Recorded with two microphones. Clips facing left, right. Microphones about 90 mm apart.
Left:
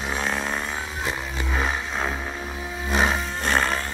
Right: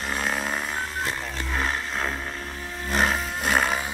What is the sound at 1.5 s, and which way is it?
Vehicle, 5° left (ahead or behind).